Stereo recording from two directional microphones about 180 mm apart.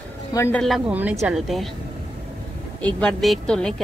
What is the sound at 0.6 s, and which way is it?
A woman's voice, centre (ahead or behind).